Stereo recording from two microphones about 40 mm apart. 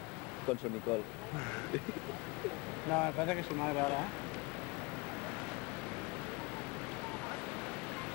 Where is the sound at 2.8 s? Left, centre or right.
Centre.